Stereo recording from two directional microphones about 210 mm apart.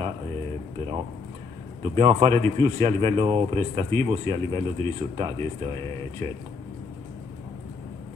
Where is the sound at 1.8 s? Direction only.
25° right (ahead or behind).